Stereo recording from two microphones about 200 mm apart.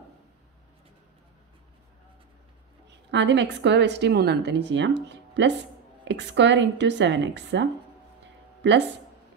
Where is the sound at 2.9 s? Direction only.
60° right (ahead or behind).